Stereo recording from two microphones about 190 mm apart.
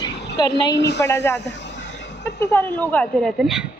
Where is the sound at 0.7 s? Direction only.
65° left (ahead or behind).